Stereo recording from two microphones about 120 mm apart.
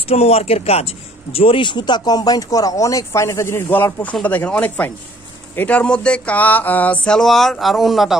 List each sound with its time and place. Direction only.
0.1 s speech: 60° left (ahead or behind); by 8.2 s centre (ahead or behind)